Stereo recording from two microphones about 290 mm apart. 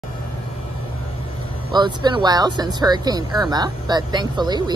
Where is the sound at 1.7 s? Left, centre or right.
Centre.